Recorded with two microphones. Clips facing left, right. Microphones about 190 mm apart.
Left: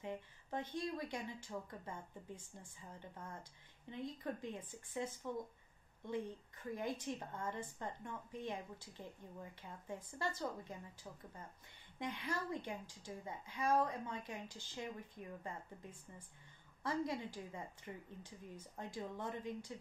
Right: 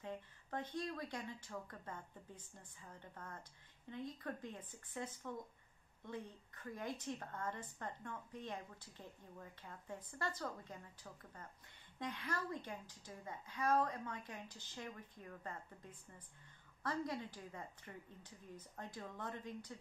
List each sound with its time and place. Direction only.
0.0 s a woman's voice: 15° left (ahead or behind)